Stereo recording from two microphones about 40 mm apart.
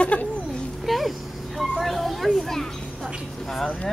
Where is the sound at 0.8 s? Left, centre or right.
Centre.